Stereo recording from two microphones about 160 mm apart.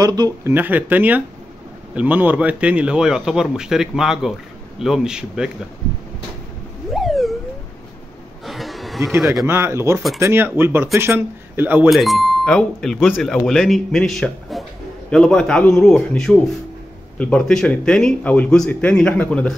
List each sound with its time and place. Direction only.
0.0 s a man's voice: 25° right (ahead or behind); by 5.5 s 5° right (ahead or behind)
6.9 s a sound: centre (ahead or behind)
8.5 s a sound: centre (ahead or behind)
9.2 s a man's voice: centre (ahead or behind)
9.5 s speech: 15° right (ahead or behind)
11.9 s a man's voice: centre (ahead or behind)